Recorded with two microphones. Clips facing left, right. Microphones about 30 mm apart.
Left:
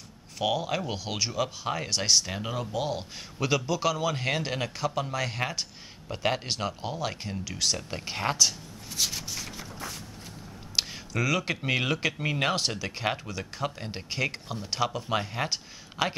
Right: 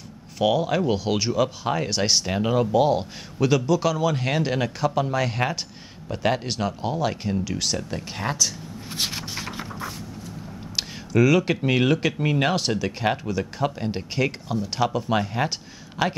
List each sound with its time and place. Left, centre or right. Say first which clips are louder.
0.4 s speech: right 7 dB; centre
3.3 s speech: right 7 dB; centre
7.9 s speech: right 2 dB; centre
8.9 s a sound: right 3 dB; right
10.8 s speech: right 8 dB; centre